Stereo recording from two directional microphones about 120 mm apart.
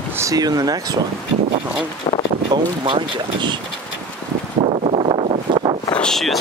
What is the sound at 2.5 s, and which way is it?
Speech, 40° right (ahead or behind).